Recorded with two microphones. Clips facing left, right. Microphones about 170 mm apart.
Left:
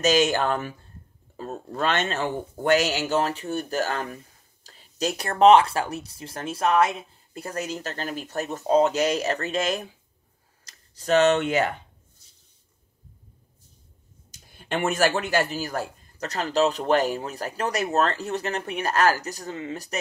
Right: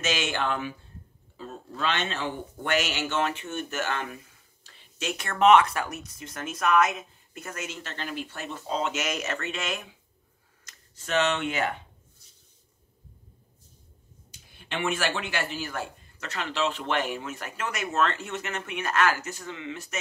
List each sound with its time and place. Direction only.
0.0 s a man's voice: 40° left (ahead or behind)
14.5 s a man's voice: 45° left (ahead or behind)